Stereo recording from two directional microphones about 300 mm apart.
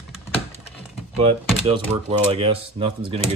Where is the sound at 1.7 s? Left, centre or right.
Centre.